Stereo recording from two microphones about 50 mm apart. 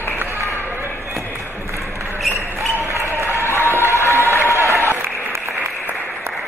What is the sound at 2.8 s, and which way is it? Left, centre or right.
Basketball bounce, right.